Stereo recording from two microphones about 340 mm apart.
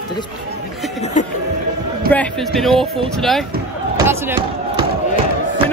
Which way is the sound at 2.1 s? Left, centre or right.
Centre.